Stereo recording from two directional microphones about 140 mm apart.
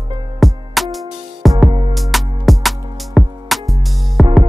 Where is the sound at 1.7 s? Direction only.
35° right (ahead or behind).